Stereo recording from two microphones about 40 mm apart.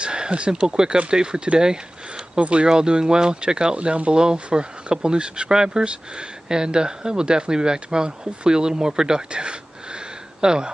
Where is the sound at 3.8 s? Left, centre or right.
Right.